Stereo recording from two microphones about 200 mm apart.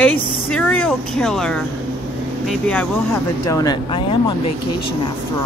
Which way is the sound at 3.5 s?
20° left (ahead or behind).